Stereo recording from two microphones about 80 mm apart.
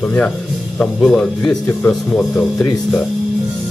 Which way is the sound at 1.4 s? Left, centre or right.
Left.